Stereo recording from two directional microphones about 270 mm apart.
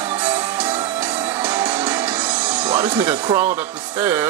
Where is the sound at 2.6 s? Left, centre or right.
Centre.